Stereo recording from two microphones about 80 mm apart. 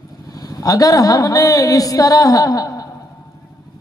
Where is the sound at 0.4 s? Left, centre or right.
Left.